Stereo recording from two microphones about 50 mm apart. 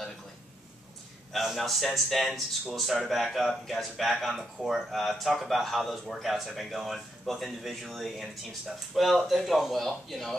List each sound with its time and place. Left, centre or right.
1.3 s speech: centre